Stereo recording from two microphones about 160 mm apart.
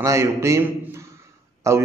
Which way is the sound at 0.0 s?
20° right (ahead or behind).